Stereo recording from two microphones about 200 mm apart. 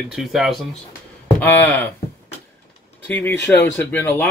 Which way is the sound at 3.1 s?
10° left (ahead or behind).